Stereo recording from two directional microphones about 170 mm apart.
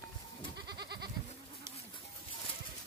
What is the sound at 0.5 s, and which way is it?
Goat, 75° right (ahead or behind).